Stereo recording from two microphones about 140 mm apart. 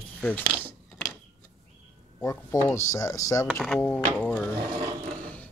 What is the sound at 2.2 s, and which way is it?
Speech, 20° left (ahead or behind).